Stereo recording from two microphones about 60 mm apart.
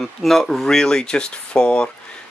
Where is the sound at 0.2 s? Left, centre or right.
Centre.